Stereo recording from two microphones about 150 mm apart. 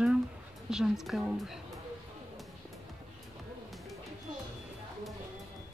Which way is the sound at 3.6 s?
Centre (ahead or behind).